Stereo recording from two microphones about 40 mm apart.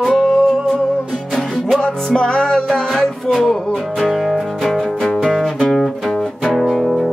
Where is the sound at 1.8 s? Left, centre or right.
Centre.